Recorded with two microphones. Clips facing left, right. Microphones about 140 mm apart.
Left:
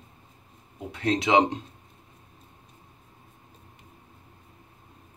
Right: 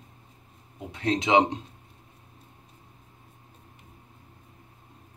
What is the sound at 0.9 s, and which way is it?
Speech, 20° right (ahead or behind).